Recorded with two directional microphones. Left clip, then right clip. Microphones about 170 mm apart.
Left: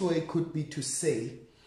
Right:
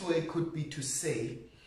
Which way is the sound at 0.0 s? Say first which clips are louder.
Left 2 dB; 35° left (ahead or behind).